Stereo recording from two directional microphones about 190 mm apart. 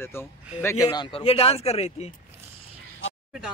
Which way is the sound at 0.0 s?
10° left (ahead or behind).